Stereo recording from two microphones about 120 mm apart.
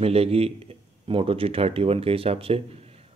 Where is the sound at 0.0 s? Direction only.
55° right (ahead or behind).